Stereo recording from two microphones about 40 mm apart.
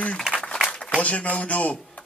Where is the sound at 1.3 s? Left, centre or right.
Left.